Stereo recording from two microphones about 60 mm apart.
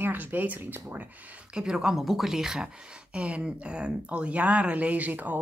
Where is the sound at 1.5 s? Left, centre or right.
Centre.